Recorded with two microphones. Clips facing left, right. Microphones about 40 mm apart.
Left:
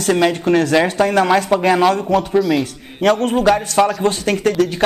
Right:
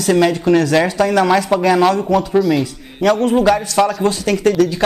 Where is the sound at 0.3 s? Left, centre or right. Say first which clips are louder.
Right 1 dB; left.